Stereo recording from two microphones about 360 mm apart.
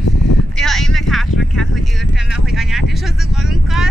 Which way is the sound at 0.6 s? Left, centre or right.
Centre.